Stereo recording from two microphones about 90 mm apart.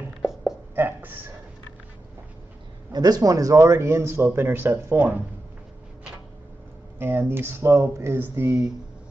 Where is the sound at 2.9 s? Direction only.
45° right (ahead or behind); by 5.0 s 25° right (ahead or behind).